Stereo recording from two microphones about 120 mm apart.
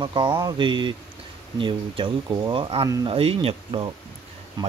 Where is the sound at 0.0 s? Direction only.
40° right (ahead or behind).